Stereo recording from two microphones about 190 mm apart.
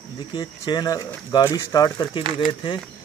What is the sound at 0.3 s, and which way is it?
Speech, 25° left (ahead or behind).